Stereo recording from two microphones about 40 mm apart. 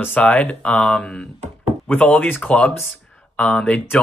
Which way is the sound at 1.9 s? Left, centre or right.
Left.